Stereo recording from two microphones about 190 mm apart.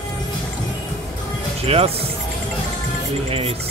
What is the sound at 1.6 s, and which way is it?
Speech, 30° right (ahead or behind).